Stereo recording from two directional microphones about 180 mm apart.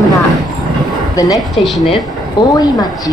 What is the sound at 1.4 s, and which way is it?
Speech, centre (ahead or behind).